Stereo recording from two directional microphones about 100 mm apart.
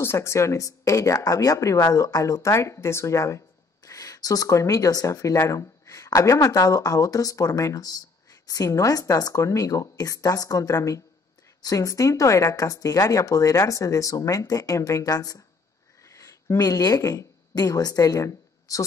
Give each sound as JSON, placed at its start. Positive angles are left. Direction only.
{"t": 0.0, "sound": "a woman's voice", "side_deg": 25}